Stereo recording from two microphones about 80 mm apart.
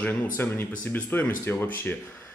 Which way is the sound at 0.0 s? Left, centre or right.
Left.